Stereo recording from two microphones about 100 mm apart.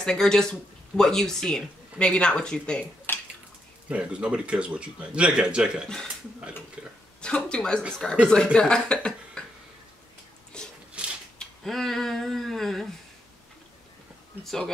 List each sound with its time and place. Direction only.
0.0 s speech: 5° left (ahead or behind)
3.1 s dishes: 20° left (ahead or behind)
3.9 s speech: 10° right (ahead or behind)
7.2 s speech: 10° left (ahead or behind)
10.5 s a sound: 10° left (ahead or behind)
11.0 s a sound: 10° right (ahead or behind)
11.3 s speech: 5° left (ahead or behind)
14.4 s speech: 5° left (ahead or behind)